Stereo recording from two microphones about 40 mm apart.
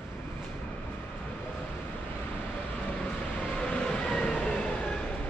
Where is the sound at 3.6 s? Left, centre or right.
Left.